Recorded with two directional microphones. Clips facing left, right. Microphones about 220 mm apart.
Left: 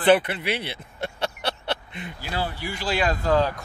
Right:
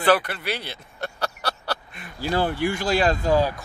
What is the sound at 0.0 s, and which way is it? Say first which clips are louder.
Speech: left 2 dB; 20° left (ahead or behind).